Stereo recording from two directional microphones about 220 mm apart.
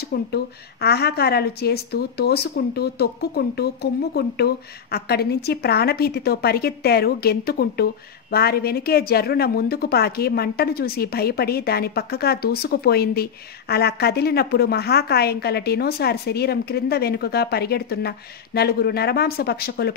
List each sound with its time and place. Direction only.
0.1 s a woman's voice: 45° left (ahead or behind)